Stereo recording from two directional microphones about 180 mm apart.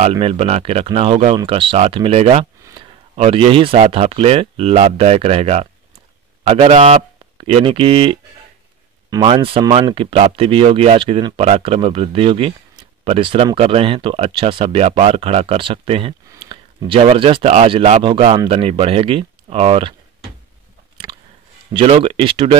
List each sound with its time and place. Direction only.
0.1 s speech: 30° right (ahead or behind)
21.1 s a sound: 20° right (ahead or behind)
21.7 s speech: 30° right (ahead or behind)